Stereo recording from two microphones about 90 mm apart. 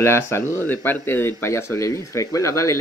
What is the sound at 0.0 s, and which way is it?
Speech, 30° left (ahead or behind).